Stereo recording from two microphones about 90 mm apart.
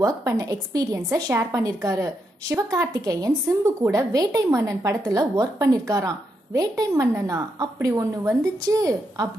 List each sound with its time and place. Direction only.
0.0 s a woman's voice: 40° right (ahead or behind)